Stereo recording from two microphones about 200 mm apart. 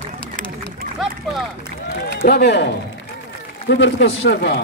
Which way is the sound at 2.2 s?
55° left (ahead or behind).